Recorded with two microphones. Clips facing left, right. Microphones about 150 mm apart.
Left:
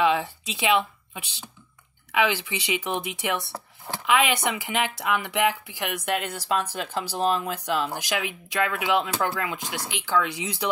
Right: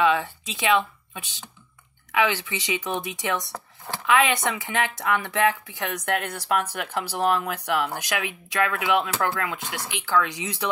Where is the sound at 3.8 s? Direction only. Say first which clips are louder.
Right 1 dB; 15° left (ahead or behind).